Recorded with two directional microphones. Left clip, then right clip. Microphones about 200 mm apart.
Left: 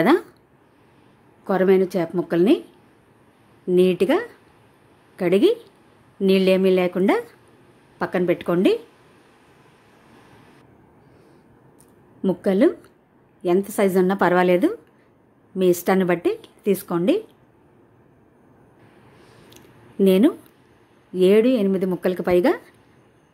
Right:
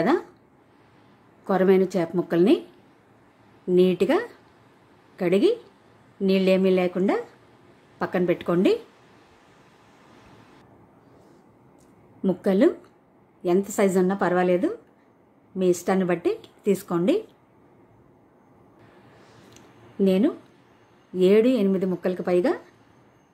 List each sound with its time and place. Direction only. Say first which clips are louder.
0.0 s a woman's voice: left 5 dB; 25° left (ahead or behind)
1.4 s a woman's voice: left 2 dB; 10° left (ahead or behind)
3.7 s a woman's voice: left 2 dB; 15° left (ahead or behind)
12.2 s a woman's voice: left 2 dB; 15° left (ahead or behind)
19.5 s a sound: left 5 dB; 25° left (ahead or behind)
21.1 s a woman's voice: left 2 dB; 15° left (ahead or behind)